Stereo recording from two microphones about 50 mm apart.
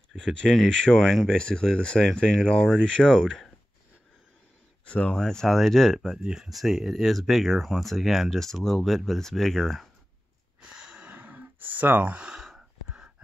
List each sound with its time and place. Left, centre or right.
0.1 s speech: centre
4.8 s speech: left
5.1 s speech: centre
5.9 s speech: centre
6.5 s speech: centre
10.6 s a sound: centre
11.1 s gasp: right
12.4 s a sound: centre